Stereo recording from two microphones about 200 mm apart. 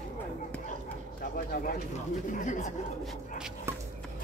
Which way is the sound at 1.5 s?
45° left (ahead or behind).